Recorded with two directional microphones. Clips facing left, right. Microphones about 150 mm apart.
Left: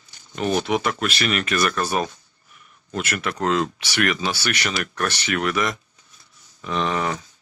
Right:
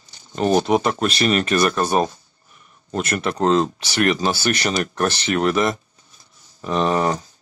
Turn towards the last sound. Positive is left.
turn(degrees=-35)  # may be behind; listen again after turning